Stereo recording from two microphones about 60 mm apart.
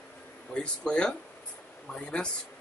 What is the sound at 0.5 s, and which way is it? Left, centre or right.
Speech, centre.